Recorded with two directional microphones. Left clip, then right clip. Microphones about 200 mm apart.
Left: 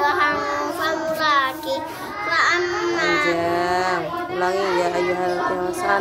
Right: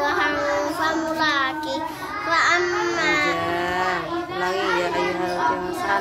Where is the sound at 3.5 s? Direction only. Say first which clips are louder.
Left 2 dB; 25° left (ahead or behind).